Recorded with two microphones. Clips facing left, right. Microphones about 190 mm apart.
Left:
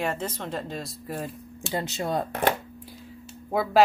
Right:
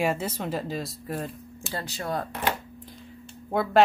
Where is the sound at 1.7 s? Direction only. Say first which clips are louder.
Left 3 dB; 25° left (ahead or behind).